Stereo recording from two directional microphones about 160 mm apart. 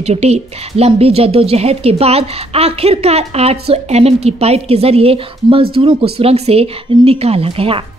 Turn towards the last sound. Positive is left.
turn(degrees=-35)  # may be behind; listen again after turning